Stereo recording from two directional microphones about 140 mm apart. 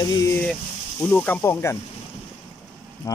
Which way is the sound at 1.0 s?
15° left (ahead or behind).